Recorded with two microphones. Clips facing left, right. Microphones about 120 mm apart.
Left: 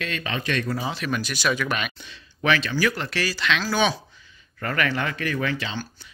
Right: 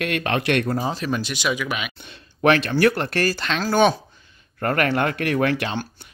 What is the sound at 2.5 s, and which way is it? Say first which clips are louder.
Speech: right 6 dB; 55° right (ahead or behind).